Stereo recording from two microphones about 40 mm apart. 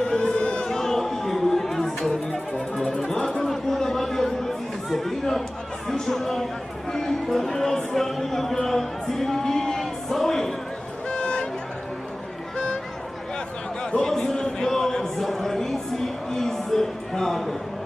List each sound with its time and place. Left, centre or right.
0.0 s music: left
0.7 s music: centre
3.4 s chatter: centre
5.9 s a sound: centre
11.1 s vehicle: left
14.0 s a sound: centre